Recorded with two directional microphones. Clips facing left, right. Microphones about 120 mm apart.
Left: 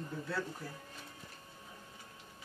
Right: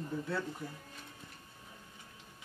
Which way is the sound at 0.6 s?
20° right (ahead or behind).